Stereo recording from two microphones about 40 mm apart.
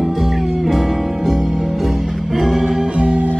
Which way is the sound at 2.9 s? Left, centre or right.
Right.